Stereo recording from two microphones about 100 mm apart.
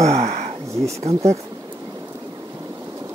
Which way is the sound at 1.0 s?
90° right.